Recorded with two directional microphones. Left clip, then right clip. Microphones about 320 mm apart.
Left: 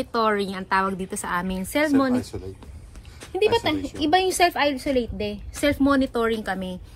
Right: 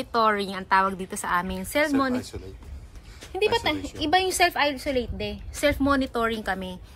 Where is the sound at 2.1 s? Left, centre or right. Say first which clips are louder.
Left 4 dB; left.